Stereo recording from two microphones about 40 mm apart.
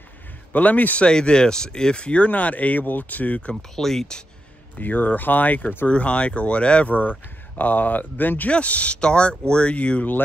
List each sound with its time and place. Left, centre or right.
0.5 s speech: left
1.0 s speech: left
3.7 s speech: centre
4.7 s speech: left
5.9 s speech: left
6.9 s speech: left
8.5 s speech: left